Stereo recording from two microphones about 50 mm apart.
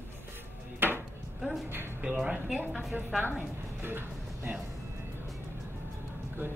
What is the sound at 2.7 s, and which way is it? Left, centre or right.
Speech, centre.